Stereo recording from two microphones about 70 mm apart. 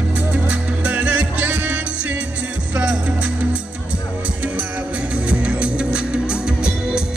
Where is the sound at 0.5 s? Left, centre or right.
Centre.